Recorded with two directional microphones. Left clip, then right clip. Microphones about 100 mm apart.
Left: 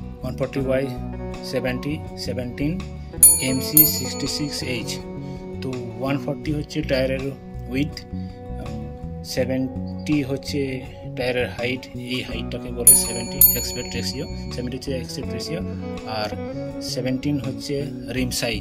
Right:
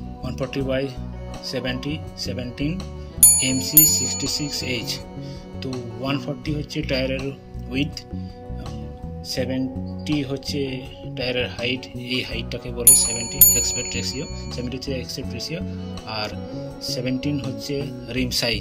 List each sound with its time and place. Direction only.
0.6 s speech: 25° left (ahead or behind)
5.6 s speech: 35° left (ahead or behind)
9.3 s speech: 35° left (ahead or behind)
12.1 s speech: 10° left (ahead or behind)